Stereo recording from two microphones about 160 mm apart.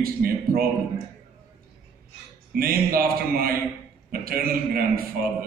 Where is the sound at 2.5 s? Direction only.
65° right (ahead or behind).